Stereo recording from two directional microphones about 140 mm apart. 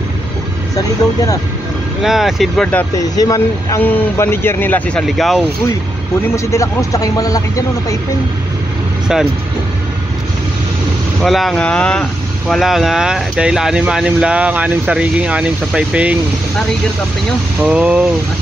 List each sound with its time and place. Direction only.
0.7 s speech: 25° left (ahead or behind)
2.0 s speech: centre (ahead or behind)
3.0 s speech: 25° left (ahead or behind)
5.0 s speech: centre (ahead or behind)
6.3 s speech: 20° left (ahead or behind)
9.0 s speech: 5° right (ahead or behind)
11.2 s speech: centre (ahead or behind)
17.6 s speech: 10° right (ahead or behind)